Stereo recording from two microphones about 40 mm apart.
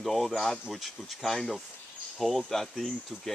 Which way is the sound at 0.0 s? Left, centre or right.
Centre.